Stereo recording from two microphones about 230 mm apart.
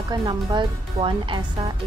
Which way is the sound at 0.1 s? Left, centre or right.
Centre.